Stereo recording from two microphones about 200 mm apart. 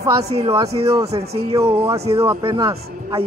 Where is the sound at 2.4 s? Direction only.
20° right (ahead or behind).